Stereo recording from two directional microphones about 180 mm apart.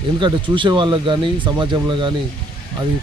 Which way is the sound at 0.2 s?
25° right (ahead or behind).